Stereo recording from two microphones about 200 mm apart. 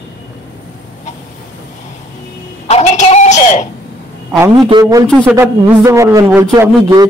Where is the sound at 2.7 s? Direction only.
35° left (ahead or behind).